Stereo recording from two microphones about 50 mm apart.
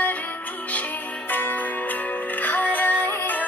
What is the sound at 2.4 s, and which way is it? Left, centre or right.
Music, left.